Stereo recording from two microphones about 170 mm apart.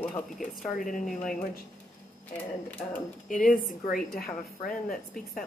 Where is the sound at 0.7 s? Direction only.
50° left (ahead or behind).